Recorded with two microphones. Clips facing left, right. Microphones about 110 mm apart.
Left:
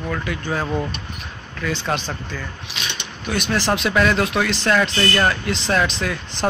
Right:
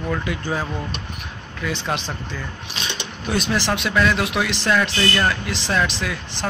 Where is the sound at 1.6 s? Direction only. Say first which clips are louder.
Left 2 dB; 15° right (ahead or behind).